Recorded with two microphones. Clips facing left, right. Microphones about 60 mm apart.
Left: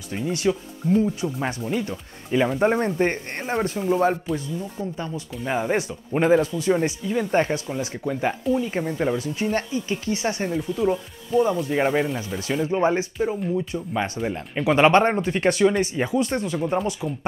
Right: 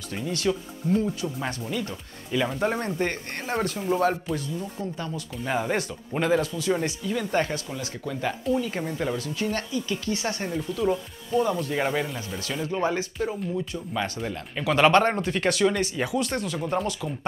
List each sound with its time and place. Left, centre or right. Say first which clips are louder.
0.1 s speech: left 3 dB; centre
3.8 s speech: left 3 dB; centre
4.9 s speech: left 2 dB; left
5.3 s speech: left 3 dB; centre
10.8 s speech: left 1 dB; centre
12.6 s speech: left 4 dB; left